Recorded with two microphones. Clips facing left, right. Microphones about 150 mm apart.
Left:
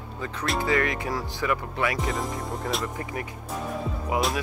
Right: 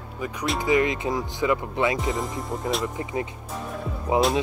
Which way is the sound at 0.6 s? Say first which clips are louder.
Right 4 dB; 20° right (ahead or behind).